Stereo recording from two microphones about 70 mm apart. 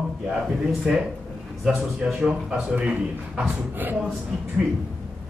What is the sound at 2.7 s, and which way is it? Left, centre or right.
Speech, centre.